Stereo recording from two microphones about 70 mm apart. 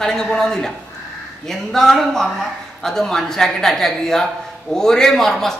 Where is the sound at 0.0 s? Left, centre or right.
Centre.